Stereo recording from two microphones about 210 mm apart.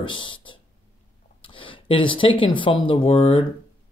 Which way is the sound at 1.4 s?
25° left (ahead or behind).